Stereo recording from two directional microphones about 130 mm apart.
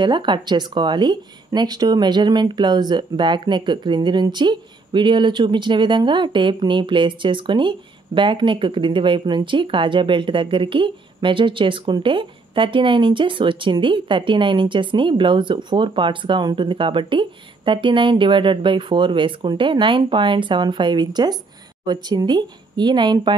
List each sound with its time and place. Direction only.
0.0 s speech: 35° right (ahead or behind)